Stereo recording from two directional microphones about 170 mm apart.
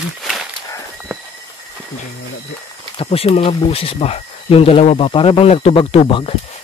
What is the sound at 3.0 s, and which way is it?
Speech, 35° left (ahead or behind).